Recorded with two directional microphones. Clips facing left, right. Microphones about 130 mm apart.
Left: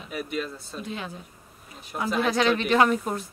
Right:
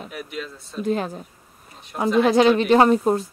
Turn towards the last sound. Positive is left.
turn(degrees=-35)  # may be behind; listen again after turning